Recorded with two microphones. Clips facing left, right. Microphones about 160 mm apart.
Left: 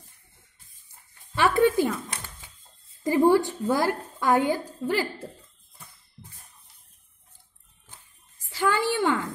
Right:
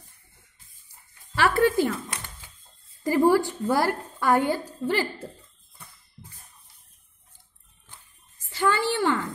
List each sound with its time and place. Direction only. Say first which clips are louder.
1.3 s speech: left 1 dB; 20° left (ahead or behind)
3.3 s a woman's voice: left 1 dB; 20° left (ahead or behind)
8.5 s a woman's voice: even; 10° left (ahead or behind)